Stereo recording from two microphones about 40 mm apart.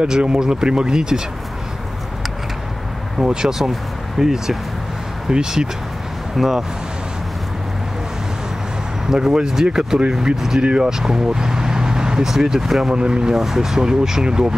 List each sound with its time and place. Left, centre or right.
0.0 s speech: right
3.2 s speech: centre
6.3 s speech: centre
9.1 s speech: centre
10.6 s speech: right
12.9 s speech: right